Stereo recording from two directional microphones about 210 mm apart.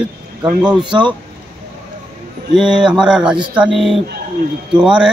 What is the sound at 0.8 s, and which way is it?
Speech, 20° right (ahead or behind).